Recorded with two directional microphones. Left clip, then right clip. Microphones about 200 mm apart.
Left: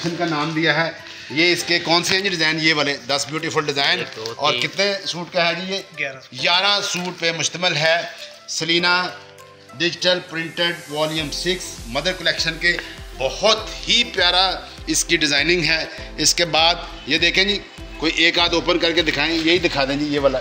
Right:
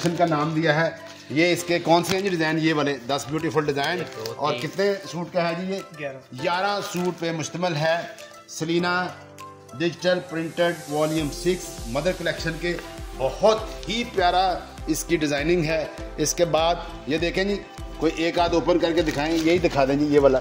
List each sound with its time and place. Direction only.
0.6 s a man's voice: 55° right (ahead or behind); by 8.0 s 30° right (ahead or behind)
8.5 s a man's voice: 40° right (ahead or behind)